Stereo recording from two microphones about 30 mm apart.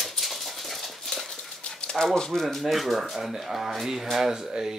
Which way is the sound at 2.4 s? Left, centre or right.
Centre.